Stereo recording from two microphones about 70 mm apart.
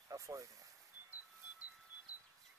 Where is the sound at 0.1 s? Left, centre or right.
Right.